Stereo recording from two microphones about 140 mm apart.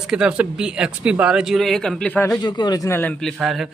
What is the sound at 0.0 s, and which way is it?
Speech, 5° right (ahead or behind).